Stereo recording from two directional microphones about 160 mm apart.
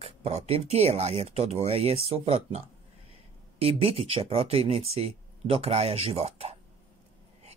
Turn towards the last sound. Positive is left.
turn(degrees=-40)  # may be behind; listen again after turning